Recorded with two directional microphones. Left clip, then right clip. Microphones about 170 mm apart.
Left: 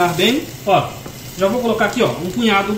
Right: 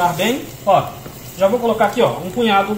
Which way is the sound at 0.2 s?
35° right (ahead or behind).